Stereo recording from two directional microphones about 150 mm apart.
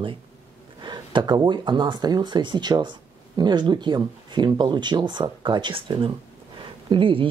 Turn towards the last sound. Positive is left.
turn(degrees=-35)  # may be behind; listen again after turning